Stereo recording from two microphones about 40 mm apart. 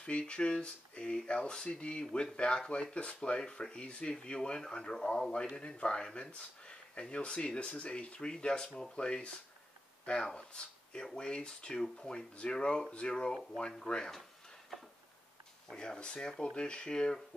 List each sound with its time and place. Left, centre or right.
0.0 s speech: left
15.7 s speech: left